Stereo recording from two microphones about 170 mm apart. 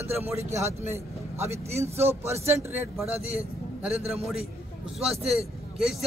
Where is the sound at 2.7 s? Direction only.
10° right (ahead or behind).